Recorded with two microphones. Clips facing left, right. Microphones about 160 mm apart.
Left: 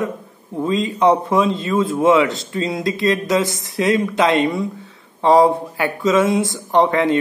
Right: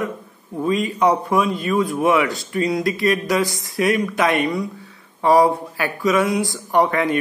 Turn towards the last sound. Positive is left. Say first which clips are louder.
# left 3 dB
turn(degrees=20)  # may be behind; listen again after turning